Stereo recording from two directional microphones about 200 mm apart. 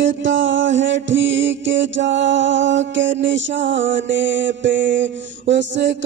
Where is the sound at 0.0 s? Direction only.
65° right (ahead or behind).